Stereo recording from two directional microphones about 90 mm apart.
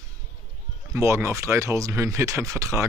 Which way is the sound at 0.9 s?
30° right (ahead or behind).